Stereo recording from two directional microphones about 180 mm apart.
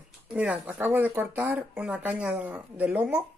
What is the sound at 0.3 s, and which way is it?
Speech, 5° right (ahead or behind).